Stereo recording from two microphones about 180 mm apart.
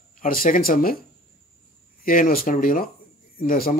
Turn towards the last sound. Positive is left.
turn(degrees=50)  # may be behind; listen again after turning